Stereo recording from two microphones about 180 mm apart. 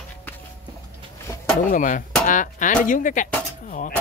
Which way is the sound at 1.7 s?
45° left (ahead or behind).